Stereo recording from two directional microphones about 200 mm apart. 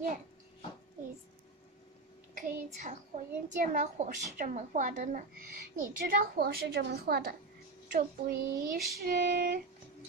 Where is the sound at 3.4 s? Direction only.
40° right (ahead or behind).